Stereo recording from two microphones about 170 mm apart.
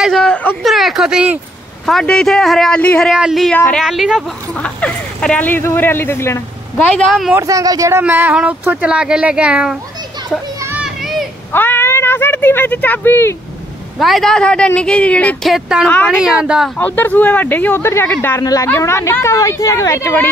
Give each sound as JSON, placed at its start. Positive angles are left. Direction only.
{"t": 0.0, "sound": "a man's voice", "side_deg": 5}
{"t": 3.5, "sound": "speech", "side_deg": 10}
{"t": 3.8, "sound": "speech", "side_deg": 0}
{"t": 7.3, "sound": "speech", "side_deg": -20}
{"t": 10.6, "sound": "children playing", "side_deg": -10}
{"t": 11.5, "sound": "a sound", "side_deg": 10}
{"t": 13.9, "sound": "a man's voice", "side_deg": 0}
{"t": 16.7, "sound": "speech", "side_deg": 10}